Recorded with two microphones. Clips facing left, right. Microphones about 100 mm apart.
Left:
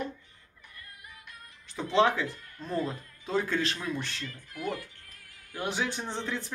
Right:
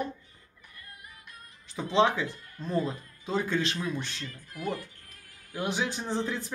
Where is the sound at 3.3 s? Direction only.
Centre (ahead or behind).